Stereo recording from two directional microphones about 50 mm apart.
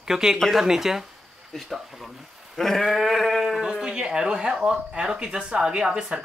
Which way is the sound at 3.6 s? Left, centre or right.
Centre.